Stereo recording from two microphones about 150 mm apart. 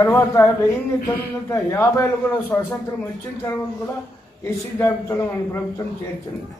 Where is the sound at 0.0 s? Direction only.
15° left (ahead or behind).